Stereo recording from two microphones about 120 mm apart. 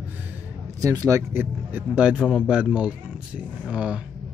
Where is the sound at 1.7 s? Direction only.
10° right (ahead or behind).